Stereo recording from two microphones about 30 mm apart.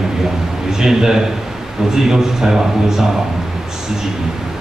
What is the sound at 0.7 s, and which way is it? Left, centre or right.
A man's voice, centre.